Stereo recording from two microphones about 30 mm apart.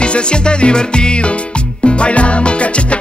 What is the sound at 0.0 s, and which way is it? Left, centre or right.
Music, left.